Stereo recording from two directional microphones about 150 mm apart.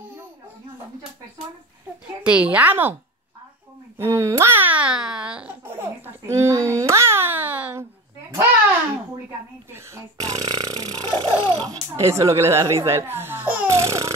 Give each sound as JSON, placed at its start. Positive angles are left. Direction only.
{"t": 2.2, "sound": "a woman's voice", "side_deg": -10}
{"t": 4.0, "sound": "babbling", "side_deg": -20}
{"t": 9.7, "sound": "burping", "side_deg": -20}
{"t": 12.8, "sound": "a sound", "side_deg": -15}